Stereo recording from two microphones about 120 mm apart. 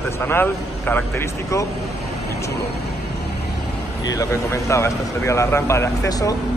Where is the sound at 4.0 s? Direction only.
30° left (ahead or behind).